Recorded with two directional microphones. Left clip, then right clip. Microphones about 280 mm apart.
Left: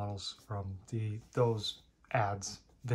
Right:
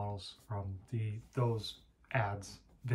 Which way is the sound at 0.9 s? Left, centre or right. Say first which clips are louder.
Left 7 dB; centre.